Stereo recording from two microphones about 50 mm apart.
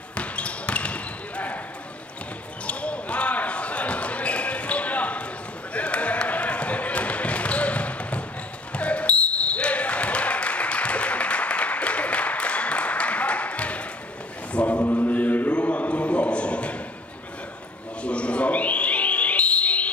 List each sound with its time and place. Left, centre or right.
0.1 s basketball bounce: left
2.6 s basketball bounce: left
14.5 s chant: left
14.8 s mantra: left
15.5 s a sound: left
18.0 s a sound: left